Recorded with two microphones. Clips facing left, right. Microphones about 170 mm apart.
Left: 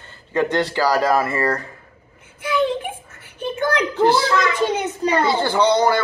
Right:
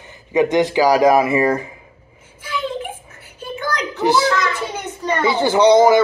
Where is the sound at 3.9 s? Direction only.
55° left (ahead or behind).